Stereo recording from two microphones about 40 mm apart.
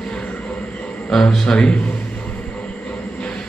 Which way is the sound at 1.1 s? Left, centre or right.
Centre.